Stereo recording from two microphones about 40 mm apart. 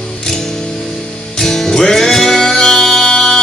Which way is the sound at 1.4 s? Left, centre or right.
Centre.